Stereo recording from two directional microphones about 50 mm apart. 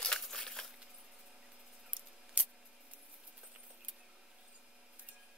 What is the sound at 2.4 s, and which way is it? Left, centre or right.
Scissors, right.